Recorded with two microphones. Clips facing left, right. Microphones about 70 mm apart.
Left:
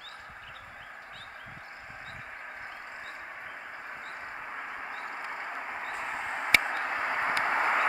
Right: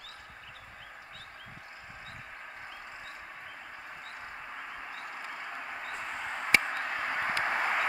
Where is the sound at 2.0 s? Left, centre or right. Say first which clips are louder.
Left 3 dB; left.